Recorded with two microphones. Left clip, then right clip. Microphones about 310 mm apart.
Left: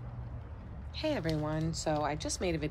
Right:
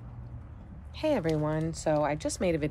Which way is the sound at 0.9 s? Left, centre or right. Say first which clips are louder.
Right 6 dB; centre.